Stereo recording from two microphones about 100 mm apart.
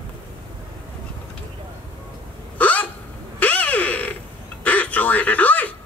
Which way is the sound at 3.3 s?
15° left (ahead or behind).